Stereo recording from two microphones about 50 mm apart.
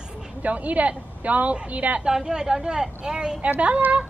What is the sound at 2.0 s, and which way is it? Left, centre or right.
Speech, centre.